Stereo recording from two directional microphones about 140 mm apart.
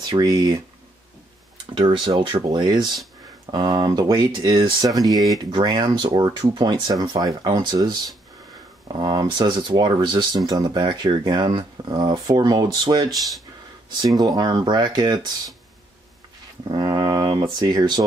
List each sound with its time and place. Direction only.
0.0 s speech: 30° right (ahead or behind)
1.8 s speech: 35° right (ahead or behind)
16.6 s speech: 30° right (ahead or behind)